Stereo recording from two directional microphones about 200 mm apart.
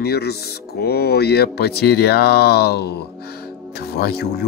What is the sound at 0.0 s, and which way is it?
Speech, 55° left (ahead or behind).